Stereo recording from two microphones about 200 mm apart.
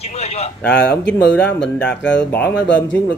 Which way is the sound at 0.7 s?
5° left (ahead or behind).